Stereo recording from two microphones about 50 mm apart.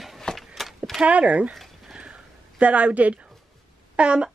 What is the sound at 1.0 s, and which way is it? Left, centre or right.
Speech, right.